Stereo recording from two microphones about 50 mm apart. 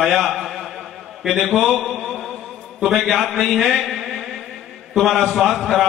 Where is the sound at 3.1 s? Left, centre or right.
Centre.